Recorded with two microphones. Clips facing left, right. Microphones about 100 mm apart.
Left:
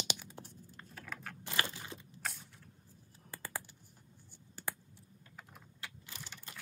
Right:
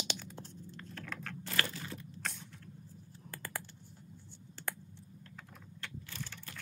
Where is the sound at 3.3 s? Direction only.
10° left (ahead or behind).